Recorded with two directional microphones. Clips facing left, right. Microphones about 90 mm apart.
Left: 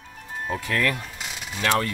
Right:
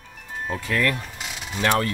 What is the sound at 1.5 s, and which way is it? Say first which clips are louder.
Mechanisms: right 2 dB; 15° right (ahead or behind).